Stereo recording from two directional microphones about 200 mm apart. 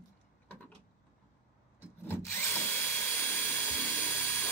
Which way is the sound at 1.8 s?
10° left (ahead or behind).